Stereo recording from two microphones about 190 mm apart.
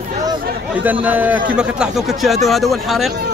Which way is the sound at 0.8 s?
10° right (ahead or behind).